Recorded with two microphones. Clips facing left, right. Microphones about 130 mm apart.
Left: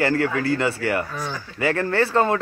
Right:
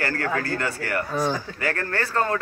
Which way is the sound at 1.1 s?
35° right (ahead or behind).